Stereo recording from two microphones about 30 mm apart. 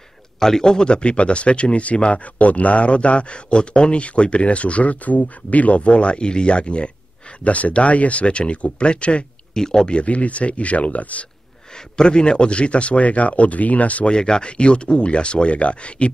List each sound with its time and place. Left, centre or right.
0.4 s a man's voice: centre
0.8 s speech: left
7.4 s speech: left
9.5 s speech: left
10.0 s speech: left
12.0 s speech: left
14.0 s speech: left